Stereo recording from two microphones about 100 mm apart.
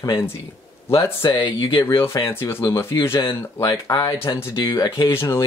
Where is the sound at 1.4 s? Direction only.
50° left (ahead or behind).